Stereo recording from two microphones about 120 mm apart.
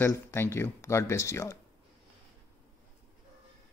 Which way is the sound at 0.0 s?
20° left (ahead or behind).